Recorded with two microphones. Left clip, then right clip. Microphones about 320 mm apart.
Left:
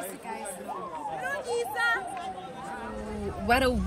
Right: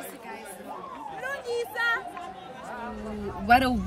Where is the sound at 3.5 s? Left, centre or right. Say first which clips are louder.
Right 4 dB; centre.